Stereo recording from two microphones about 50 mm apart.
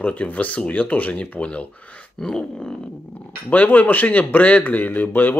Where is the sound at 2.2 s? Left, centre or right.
Centre.